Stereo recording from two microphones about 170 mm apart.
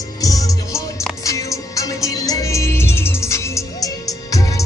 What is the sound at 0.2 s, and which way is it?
Music, 20° left (ahead or behind).